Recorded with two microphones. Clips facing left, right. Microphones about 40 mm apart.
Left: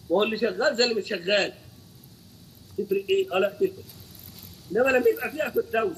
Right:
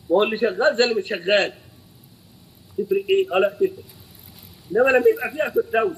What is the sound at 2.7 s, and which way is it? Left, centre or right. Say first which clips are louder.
A man's voice: right 4 dB; centre.